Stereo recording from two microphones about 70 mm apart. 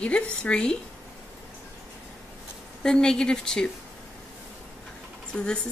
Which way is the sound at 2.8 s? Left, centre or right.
Centre.